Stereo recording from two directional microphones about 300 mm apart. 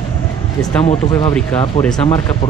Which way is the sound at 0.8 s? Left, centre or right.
Centre.